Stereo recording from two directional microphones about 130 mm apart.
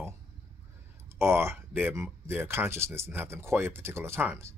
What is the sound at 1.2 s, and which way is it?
Speech, 20° right (ahead or behind).